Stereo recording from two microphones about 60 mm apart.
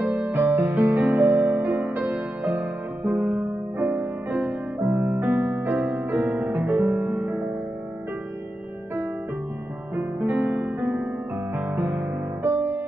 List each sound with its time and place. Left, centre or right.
0.3 s music: right
9.9 s music: right